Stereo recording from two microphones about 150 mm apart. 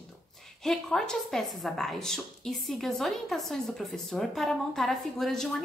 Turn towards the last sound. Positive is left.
turn(degrees=5)  # may be behind; listen again after turning